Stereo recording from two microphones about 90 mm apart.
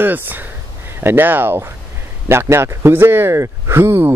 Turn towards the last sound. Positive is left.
turn(degrees=-25)  # may be behind; listen again after turning